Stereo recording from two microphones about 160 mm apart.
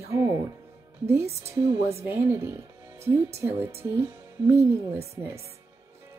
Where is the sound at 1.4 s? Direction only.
15° right (ahead or behind).